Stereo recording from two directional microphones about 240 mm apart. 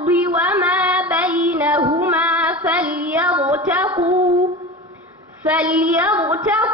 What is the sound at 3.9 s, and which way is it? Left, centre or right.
Female singing, right.